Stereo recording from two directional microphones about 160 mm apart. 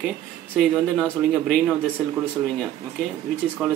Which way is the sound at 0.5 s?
Centre (ahead or behind).